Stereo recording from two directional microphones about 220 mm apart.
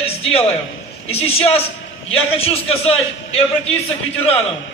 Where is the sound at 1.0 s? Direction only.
25° left (ahead or behind).